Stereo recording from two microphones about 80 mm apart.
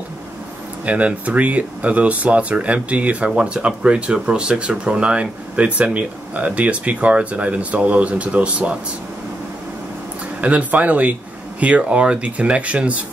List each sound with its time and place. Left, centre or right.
0.8 s speech: centre
10.4 s speech: centre